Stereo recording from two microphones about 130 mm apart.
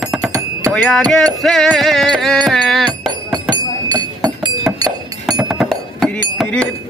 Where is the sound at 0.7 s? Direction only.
5° left (ahead or behind).